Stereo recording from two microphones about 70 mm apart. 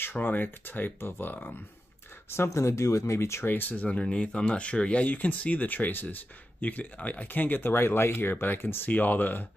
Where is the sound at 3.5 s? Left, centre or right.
Left.